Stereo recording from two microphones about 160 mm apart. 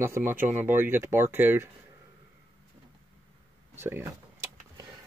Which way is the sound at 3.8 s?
15° right (ahead or behind).